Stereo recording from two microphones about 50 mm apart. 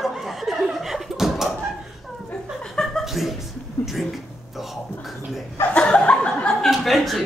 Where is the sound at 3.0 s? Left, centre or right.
Centre.